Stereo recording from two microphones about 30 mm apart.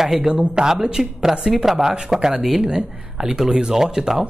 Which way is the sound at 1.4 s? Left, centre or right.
Centre.